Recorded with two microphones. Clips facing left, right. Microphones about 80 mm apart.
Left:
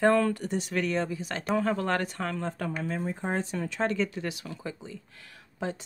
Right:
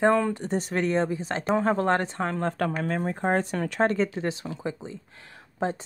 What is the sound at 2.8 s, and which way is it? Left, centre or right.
Speech, right.